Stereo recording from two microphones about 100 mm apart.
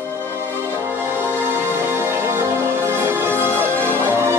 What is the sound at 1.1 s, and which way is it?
Music, 25° right (ahead or behind).